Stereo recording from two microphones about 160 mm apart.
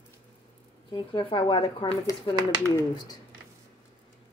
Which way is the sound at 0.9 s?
30° left (ahead or behind).